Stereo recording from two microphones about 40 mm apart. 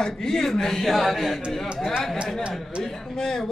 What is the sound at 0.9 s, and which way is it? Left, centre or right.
Speech, centre.